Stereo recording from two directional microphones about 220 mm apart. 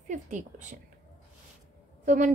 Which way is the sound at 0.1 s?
35° right (ahead or behind).